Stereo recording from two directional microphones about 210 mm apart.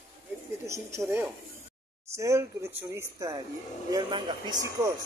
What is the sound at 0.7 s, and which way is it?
Speech, 15° right (ahead or behind).